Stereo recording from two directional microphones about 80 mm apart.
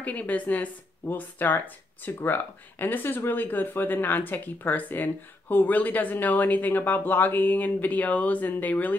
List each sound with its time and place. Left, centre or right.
0.0 s speech: centre